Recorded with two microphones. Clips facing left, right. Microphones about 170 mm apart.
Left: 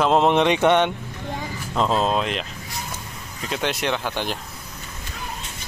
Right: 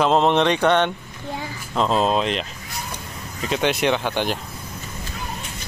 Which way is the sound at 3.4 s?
Centre (ahead or behind).